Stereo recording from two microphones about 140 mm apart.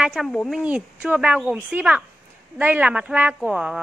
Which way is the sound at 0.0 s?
Centre (ahead or behind).